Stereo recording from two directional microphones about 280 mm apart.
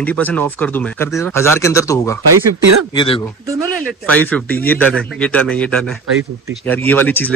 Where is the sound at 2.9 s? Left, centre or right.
Centre.